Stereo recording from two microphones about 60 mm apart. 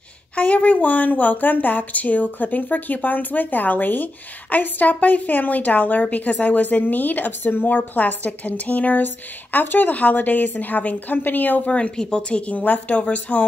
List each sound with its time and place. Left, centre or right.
0.4 s speech: left
11.7 s speech: centre